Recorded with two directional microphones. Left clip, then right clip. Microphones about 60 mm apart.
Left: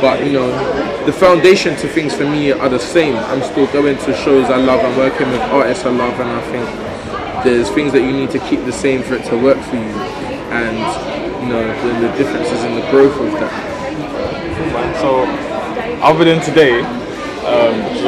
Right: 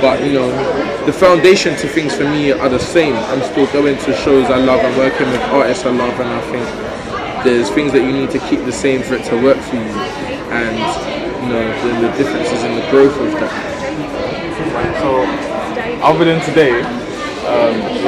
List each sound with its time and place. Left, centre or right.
0.0 s speech: centre
7.4 s speech: centre
9.1 s speech: centre
12.9 s speech: right
16.0 s a man's voice: left